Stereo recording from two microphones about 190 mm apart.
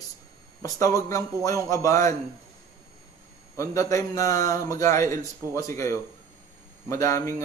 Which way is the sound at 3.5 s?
15° left (ahead or behind).